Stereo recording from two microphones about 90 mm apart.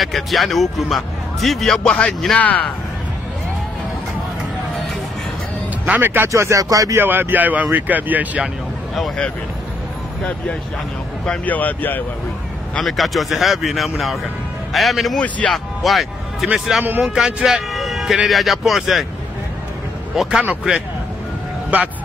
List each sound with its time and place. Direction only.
0.0 s speech: centre (ahead or behind)
5.9 s speech: 20° right (ahead or behind); by 7.0 s 40° right (ahead or behind)
7.0 s speech: 25° right (ahead or behind)
8.9 s speech: centre (ahead or behind)
11.2 s speech: 20° left (ahead or behind)
12.8 s speech: centre (ahead or behind)
15.1 s speech: 15° left (ahead or behind)
15.5 s a man's voice: centre (ahead or behind)
16.8 s speech: 20° right (ahead or behind)
17.1 s speech: 5° right (ahead or behind)
20.2 s speech: 10° right (ahead or behind)